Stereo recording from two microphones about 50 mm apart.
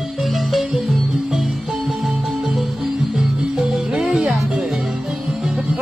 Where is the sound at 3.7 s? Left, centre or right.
Centre.